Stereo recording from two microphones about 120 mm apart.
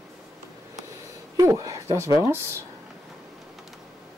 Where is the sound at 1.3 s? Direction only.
30° right (ahead or behind).